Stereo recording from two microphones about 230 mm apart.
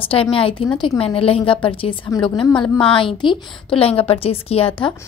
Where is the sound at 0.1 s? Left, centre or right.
Left.